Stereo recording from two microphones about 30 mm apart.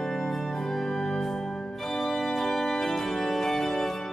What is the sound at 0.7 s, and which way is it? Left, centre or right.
Organ, left.